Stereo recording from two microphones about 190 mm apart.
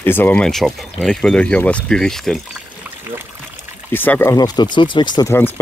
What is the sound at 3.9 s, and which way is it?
Speech, 10° left (ahead or behind).